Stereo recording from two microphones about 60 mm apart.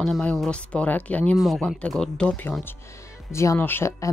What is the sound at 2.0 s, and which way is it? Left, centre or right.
Speech, centre.